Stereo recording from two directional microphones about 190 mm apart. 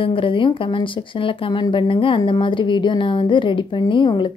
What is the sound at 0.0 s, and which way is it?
Speech, 25° left (ahead or behind).